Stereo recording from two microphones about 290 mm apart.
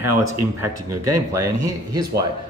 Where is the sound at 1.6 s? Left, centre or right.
Centre.